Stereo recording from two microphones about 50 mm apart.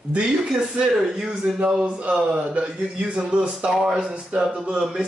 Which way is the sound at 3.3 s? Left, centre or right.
Centre.